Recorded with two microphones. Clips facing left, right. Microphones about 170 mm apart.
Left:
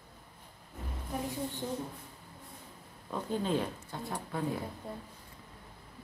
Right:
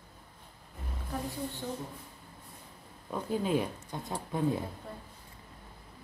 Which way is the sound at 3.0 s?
10° right (ahead or behind).